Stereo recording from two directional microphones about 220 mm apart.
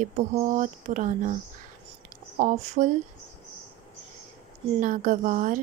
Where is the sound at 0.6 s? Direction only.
35° right (ahead or behind).